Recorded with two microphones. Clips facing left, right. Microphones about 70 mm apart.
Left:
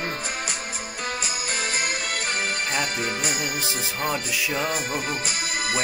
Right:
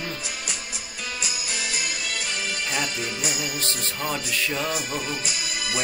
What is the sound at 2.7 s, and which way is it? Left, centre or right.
Speech, left.